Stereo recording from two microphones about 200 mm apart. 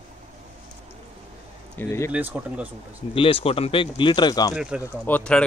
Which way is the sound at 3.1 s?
25° left (ahead or behind).